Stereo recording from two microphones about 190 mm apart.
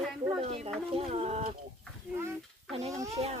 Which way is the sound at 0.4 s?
30° right (ahead or behind).